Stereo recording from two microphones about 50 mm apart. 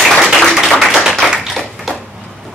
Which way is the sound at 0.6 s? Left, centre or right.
Centre.